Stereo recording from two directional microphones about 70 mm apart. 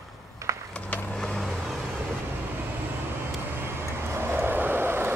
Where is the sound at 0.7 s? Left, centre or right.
Centre.